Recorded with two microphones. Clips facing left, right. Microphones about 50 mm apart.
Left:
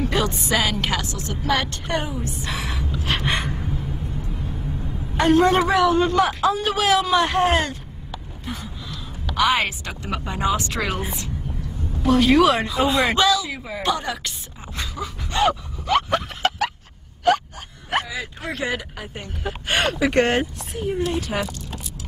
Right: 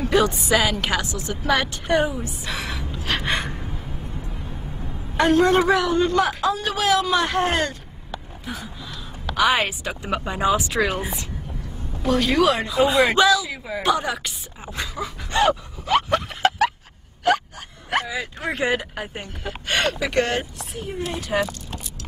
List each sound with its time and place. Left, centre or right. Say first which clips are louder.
0.0 s speech: right 3 dB; centre
5.1 s speech: even; centre
8.5 s gasp: even; centre
9.3 s speech: even; centre
15.3 s gasp: right 1 dB; centre
18.0 s speech: right 3 dB; centre
19.4 s speech: left 1 dB; centre
20.2 s speech: left 3 dB; left
20.5 s speech: left 5 dB; centre